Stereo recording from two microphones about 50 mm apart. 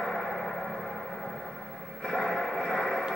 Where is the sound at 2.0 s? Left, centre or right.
Centre.